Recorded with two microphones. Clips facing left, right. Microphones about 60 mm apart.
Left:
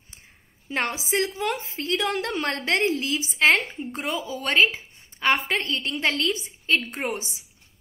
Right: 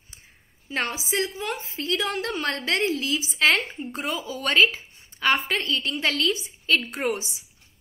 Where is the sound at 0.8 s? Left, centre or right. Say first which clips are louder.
Left 3 dB; left.